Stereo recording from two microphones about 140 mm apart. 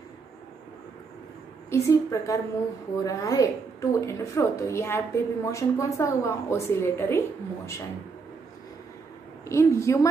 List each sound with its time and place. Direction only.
1.7 s a woman's voice: 20° left (ahead or behind)
9.5 s a woman's voice: 20° left (ahead or behind)